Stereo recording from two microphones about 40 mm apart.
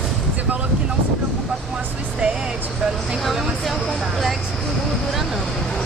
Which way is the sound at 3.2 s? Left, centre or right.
Centre.